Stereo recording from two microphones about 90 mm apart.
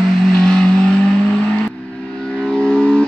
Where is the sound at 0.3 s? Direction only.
5° left (ahead or behind).